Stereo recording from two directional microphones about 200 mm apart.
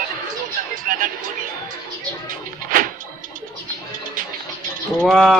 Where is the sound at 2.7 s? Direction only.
45° right (ahead or behind).